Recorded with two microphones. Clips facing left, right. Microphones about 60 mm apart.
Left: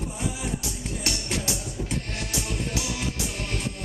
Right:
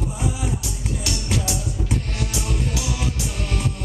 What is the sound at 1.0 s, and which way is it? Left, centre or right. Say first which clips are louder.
Music: right 3 dB; left.